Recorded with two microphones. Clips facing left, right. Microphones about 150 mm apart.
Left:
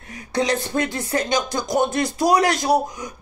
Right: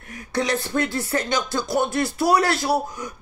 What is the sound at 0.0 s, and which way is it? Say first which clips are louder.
Speech: left 2 dB; 20° left (ahead or behind).